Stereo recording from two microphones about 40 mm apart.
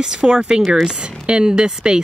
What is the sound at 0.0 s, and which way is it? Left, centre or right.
Speech, right.